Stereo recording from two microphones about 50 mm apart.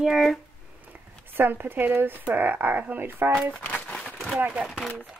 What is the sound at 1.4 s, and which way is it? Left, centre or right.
Speech, right.